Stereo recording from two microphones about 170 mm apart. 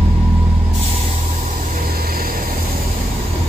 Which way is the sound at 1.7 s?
60° right (ahead or behind).